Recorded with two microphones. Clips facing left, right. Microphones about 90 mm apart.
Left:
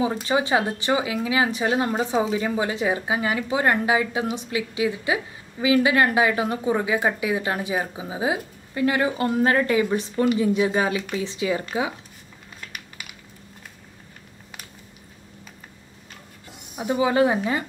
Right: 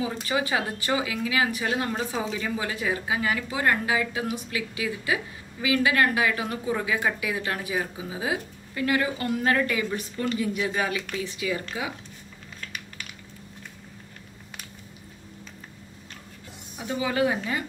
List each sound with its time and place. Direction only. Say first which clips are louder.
0.3 s speech: left 4 dB; 25° left (ahead or behind)
12.5 s typing: even; 10° left (ahead or behind)
16.7 s speech: left 7 dB; 25° left (ahead or behind)